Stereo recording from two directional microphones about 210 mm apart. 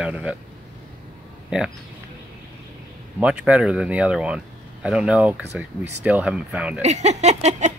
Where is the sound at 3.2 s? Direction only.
5° right (ahead or behind).